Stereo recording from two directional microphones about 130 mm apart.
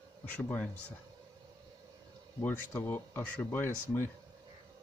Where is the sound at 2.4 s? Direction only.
15° left (ahead or behind).